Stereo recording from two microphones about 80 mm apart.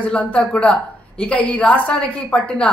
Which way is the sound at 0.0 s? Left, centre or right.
Centre.